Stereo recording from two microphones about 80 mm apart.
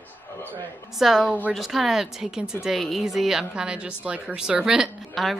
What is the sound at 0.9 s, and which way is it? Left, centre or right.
Speech, centre.